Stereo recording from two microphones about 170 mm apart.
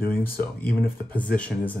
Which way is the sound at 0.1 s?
10° left (ahead or behind).